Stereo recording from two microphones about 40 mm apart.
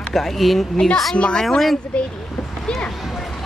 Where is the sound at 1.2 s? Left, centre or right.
Left.